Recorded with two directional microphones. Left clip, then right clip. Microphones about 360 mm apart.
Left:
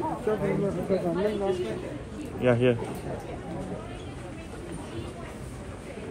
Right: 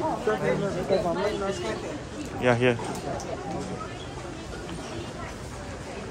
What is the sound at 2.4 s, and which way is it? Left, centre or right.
Speech, centre.